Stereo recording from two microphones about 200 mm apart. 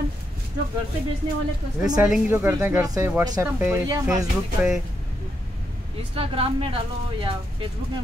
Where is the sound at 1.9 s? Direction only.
5° right (ahead or behind).